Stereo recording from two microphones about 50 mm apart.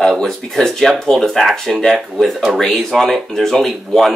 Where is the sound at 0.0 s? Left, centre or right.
Centre.